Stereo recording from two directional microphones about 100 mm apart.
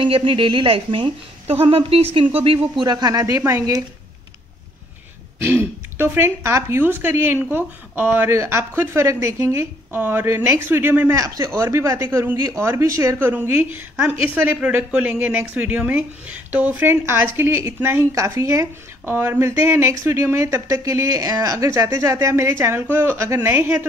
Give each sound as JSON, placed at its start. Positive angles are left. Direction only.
{"t": 0.0, "sound": "speech", "side_deg": -55}
{"t": 2.8, "sound": "speech", "side_deg": -40}
{"t": 5.4, "sound": "speech", "side_deg": -20}